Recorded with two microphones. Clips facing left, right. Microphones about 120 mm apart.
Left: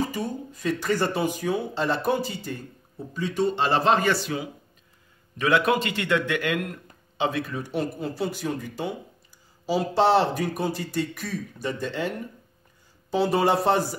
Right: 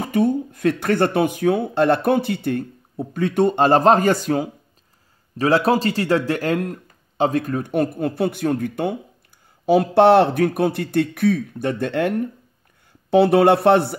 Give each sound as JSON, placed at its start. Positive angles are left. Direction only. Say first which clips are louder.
{"t": 0.0, "sound": "speech", "louder": "right 9 dB", "side_deg": -60}
{"t": 5.4, "sound": "a man's voice", "louder": "right 5 dB", "side_deg": -35}